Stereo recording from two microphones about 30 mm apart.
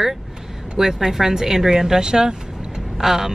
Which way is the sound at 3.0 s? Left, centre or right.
Centre.